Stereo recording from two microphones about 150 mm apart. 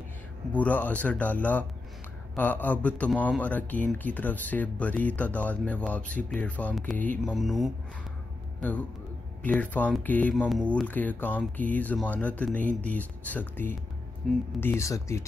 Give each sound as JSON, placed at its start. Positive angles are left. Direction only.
{"t": 0.5, "sound": "a man's voice", "side_deg": 10}
{"t": 14.2, "sound": "speech", "side_deg": 0}
{"t": 14.6, "sound": "speech", "side_deg": 15}